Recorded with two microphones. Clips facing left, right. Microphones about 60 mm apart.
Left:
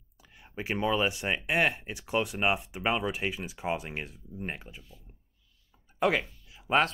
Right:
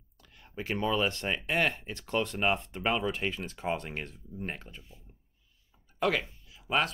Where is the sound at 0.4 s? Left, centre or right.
Centre.